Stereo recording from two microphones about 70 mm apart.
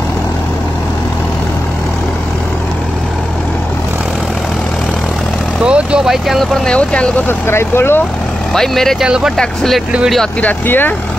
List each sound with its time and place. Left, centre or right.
5.6 s vehicle: centre
6.0 s speech: centre
6.6 s speech: centre
7.2 s speech: left
8.5 s speech: centre
9.0 s speech: centre
9.4 s speech: centre
10.4 s speech: left